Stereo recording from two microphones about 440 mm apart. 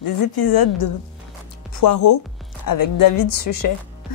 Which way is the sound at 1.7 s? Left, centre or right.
Left.